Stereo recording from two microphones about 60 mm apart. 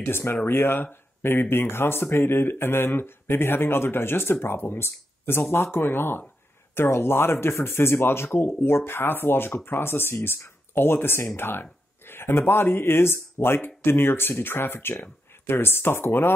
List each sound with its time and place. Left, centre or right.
0.0 s speech: left